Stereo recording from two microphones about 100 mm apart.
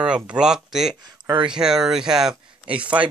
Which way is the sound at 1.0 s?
45° right (ahead or behind).